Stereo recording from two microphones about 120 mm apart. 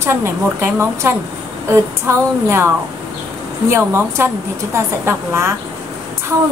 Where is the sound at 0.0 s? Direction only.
20° right (ahead or behind).